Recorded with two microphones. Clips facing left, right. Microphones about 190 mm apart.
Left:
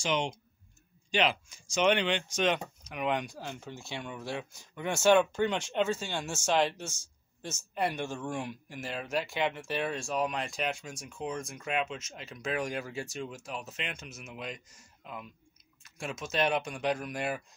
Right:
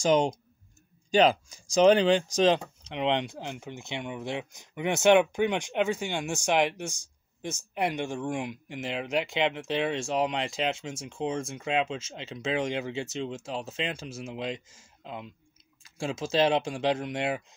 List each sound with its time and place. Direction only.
0.0 s speech: 40° right (ahead or behind); by 17.6 s 25° right (ahead or behind)